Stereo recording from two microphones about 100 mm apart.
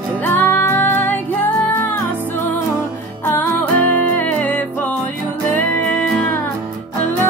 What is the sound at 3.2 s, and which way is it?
Music, 20° left (ahead or behind).